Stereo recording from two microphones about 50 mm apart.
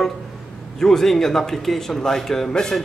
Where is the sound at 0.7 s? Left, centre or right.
Centre.